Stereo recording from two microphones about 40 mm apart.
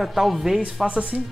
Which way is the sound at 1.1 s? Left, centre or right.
Right.